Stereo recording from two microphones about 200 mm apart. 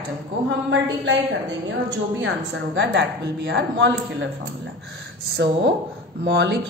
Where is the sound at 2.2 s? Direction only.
65° right (ahead or behind).